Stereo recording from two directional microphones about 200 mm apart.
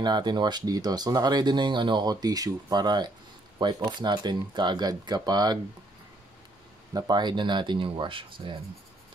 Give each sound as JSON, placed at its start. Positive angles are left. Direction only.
{"t": 0.0, "sound": "speech", "side_deg": -20}
{"t": 6.9, "sound": "speech", "side_deg": -20}